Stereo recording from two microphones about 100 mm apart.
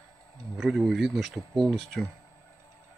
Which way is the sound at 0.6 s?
5° right (ahead or behind).